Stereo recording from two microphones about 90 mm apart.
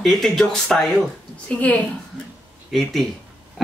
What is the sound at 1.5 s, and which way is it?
Speech, 15° left (ahead or behind).